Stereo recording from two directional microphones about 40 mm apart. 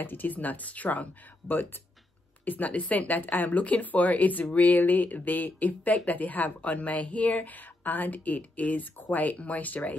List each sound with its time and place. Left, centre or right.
0.0 s speech: left
2.4 s speech: left